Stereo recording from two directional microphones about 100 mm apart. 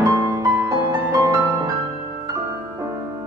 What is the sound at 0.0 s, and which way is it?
Music, 30° right (ahead or behind).